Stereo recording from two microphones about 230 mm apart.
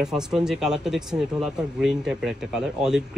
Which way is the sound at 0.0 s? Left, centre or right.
Centre.